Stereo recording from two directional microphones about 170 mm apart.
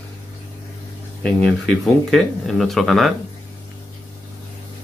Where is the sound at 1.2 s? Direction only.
5° left (ahead or behind).